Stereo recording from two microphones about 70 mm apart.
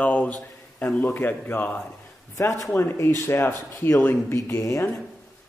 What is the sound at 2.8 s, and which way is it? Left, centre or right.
A man's voice, left.